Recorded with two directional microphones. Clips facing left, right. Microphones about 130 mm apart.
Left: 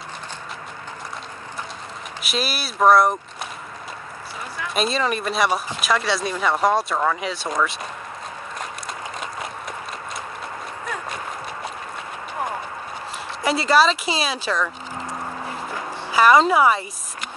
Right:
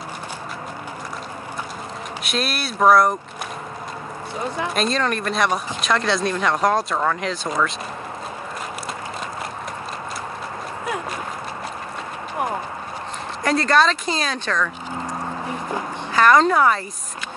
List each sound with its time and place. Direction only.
2.2 s speech: centre (ahead or behind)
4.4 s speech: 25° right (ahead or behind)
4.7 s speech: 5° left (ahead or behind)
13.4 s speech: 5° left (ahead or behind)
16.1 s speech: 10° left (ahead or behind)